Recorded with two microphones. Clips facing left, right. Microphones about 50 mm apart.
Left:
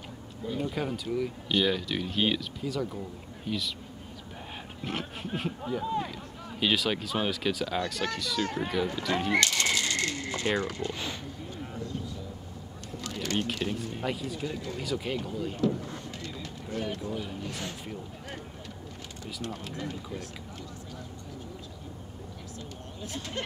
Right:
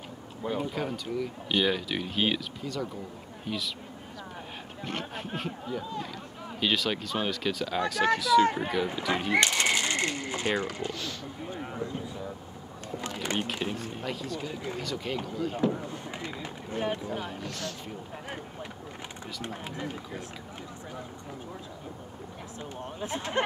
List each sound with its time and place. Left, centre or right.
0.6 s speech: centre
1.5 s speech: centre
4.8 s speech: centre
7.8 s speech: centre
9.4 s bird: right
10.5 s speech: centre
11.5 s a sound: right
13.0 s a sound: right
14.0 s speech: centre
15.5 s run: right
17.5 s speech: centre
19.4 s speech: right
22.9 s speech: right